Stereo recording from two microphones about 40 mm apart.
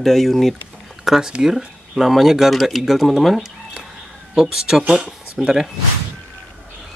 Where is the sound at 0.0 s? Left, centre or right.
Centre.